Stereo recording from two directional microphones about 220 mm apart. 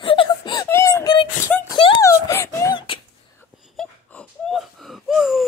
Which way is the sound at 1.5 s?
5° left (ahead or behind).